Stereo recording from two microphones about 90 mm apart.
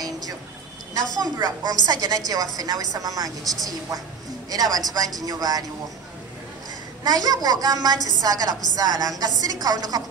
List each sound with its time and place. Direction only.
1.1 s a woman's voice: 45° right (ahead or behind)
7.1 s a woman's voice: 45° right (ahead or behind)